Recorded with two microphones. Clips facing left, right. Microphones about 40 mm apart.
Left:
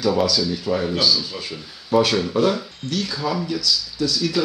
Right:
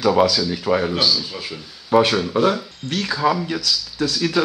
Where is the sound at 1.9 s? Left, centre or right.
Right.